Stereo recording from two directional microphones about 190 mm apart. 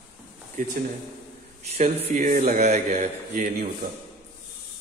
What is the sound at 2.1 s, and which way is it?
Speech, 40° right (ahead or behind).